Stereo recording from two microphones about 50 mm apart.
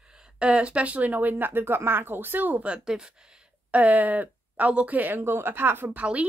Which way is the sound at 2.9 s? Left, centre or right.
Centre.